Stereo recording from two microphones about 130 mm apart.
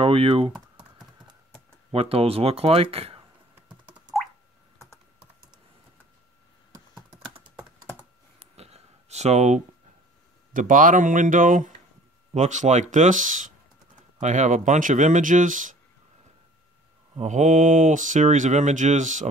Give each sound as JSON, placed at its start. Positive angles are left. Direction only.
{"t": 0.0, "sound": "typing", "side_deg": -45}
{"t": 1.9, "sound": "speech", "side_deg": -45}
{"t": 3.5, "sound": "typing", "side_deg": -5}
{"t": 5.2, "sound": "typing", "side_deg": -40}
{"t": 8.4, "sound": "a sound", "side_deg": -55}
{"t": 10.5, "sound": "speech", "side_deg": -90}
{"t": 12.4, "sound": "speech", "side_deg": -65}
{"t": 14.2, "sound": "speech", "side_deg": -70}
{"t": 17.2, "sound": "speech", "side_deg": -65}